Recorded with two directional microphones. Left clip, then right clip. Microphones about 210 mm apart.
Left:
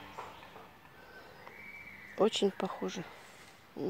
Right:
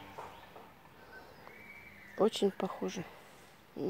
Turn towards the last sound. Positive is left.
turn(degrees=-5)  # may be behind; listen again after turning